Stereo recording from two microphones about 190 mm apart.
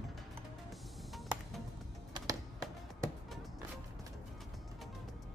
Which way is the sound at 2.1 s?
20° right (ahead or behind).